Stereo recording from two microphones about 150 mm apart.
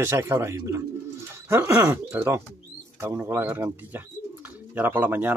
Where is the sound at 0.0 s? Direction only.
15° right (ahead or behind).